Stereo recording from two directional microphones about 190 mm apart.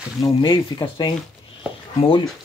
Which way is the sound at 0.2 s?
25° left (ahead or behind).